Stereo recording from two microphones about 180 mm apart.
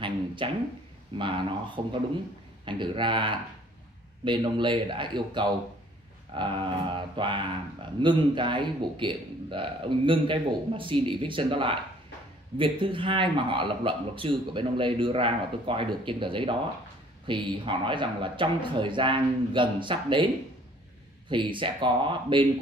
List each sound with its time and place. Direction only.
0.4 s speech: 25° right (ahead or behind)
21.3 s speech: 25° right (ahead or behind)